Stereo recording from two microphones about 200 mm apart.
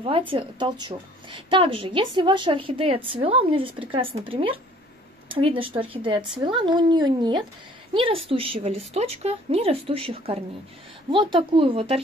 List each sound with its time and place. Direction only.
0.3 s a woman's voice: 25° right (ahead or behind)